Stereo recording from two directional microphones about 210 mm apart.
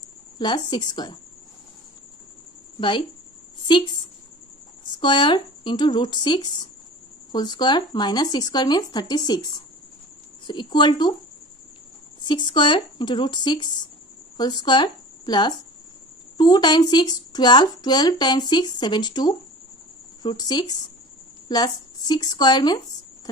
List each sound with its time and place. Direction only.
0.4 s speech: 20° left (ahead or behind)
3.6 s a woman's voice: 20° left (ahead or behind)
12.2 s speech: 20° left (ahead or behind)